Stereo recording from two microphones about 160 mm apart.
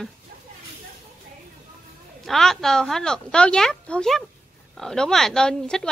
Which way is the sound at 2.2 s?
Centre (ahead or behind).